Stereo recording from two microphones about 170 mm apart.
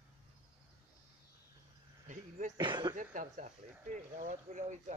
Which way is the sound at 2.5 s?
25° right (ahead or behind).